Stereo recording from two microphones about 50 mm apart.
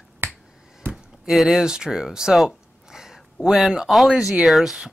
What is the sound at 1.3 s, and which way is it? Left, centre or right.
Speech, centre.